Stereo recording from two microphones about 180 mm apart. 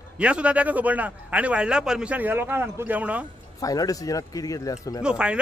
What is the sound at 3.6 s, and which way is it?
Speech, 20° left (ahead or behind).